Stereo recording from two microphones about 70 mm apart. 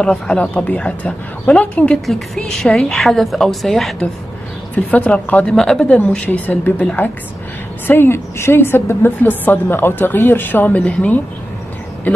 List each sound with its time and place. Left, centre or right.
0.0 s speech: centre
2.0 s a woman's voice: centre
4.7 s speech: centre
5.9 s a woman's voice: left